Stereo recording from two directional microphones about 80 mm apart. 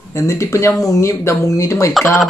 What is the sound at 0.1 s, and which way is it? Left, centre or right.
Speech, left.